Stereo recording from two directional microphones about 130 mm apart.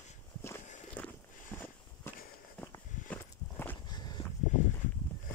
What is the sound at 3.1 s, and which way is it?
Walk, 15° left (ahead or behind).